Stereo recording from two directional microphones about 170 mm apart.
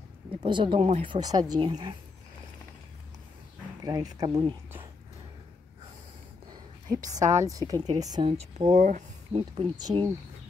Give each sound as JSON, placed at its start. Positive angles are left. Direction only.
{"t": 0.4, "sound": "speech", "side_deg": -30}
{"t": 0.7, "sound": "speech", "side_deg": -40}
{"t": 3.8, "sound": "speech", "side_deg": -20}
{"t": 7.1, "sound": "a woman's voice", "side_deg": -45}
{"t": 7.3, "sound": "speech", "side_deg": -20}
{"t": 8.7, "sound": "speech", "side_deg": -45}
{"t": 9.8, "sound": "speech", "side_deg": -25}